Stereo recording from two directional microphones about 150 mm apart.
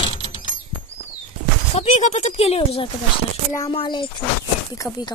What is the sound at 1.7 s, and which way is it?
Speech, 45° left (ahead or behind).